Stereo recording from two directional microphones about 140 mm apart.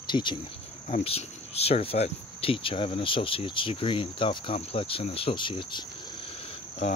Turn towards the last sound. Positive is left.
turn(degrees=45)  # may be behind; listen again after turning